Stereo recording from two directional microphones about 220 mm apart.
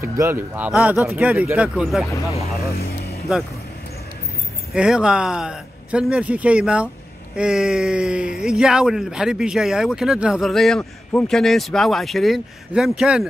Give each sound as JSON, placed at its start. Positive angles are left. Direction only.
{"t": 0.0, "sound": "speech", "side_deg": -10}
{"t": 2.7, "sound": "speech", "side_deg": 45}
{"t": 4.7, "sound": "a man's voice", "side_deg": -5}